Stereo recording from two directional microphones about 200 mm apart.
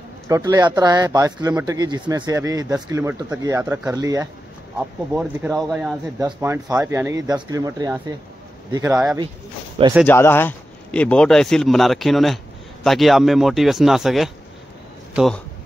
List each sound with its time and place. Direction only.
0.3 s speech: 20° right (ahead or behind); by 5.9 s centre (ahead or behind)
6.1 s speech: 15° right (ahead or behind)
10.0 s speech: 10° left (ahead or behind)